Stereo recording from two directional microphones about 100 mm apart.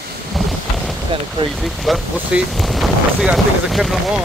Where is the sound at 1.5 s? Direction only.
Centre (ahead or behind).